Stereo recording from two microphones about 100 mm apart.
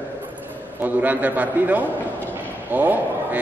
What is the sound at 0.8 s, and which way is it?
Speech, 15° right (ahead or behind).